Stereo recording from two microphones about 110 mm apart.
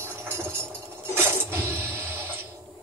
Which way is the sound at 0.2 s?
20° right (ahead or behind).